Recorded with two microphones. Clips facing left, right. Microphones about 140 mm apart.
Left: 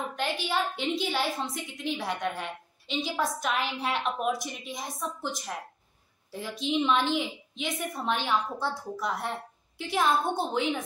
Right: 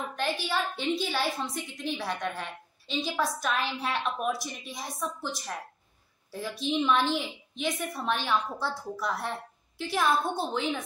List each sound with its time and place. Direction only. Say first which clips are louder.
0.1 s a woman's voice: right 2 dB; 20° left (ahead or behind)